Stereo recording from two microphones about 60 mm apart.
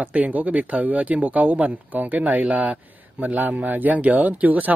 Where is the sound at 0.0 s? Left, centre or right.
Right.